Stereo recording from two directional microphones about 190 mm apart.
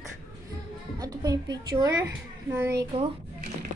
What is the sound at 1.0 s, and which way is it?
A woman's voice, 20° right (ahead or behind).